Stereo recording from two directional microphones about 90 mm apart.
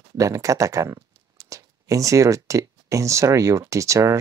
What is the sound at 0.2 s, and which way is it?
Speech, 35° right (ahead or behind).